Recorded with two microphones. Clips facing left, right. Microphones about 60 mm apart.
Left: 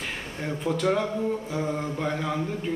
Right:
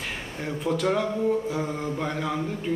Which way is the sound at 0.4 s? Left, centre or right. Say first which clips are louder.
Right 1 dB; centre.